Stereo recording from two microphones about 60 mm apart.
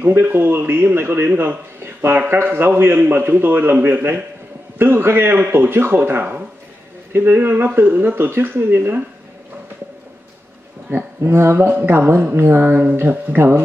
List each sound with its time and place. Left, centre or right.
0.1 s a man's voice: right
10.9 s a man's voice: right